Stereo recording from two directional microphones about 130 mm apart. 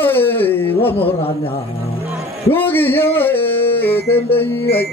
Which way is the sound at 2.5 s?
15° left (ahead or behind).